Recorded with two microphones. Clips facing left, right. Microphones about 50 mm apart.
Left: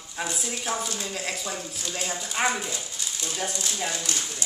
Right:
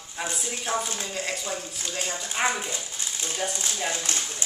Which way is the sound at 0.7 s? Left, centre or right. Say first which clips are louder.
Right 2 dB; centre.